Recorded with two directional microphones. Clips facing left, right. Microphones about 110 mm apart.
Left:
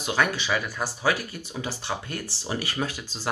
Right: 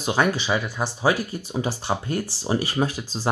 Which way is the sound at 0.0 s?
30° right (ahead or behind).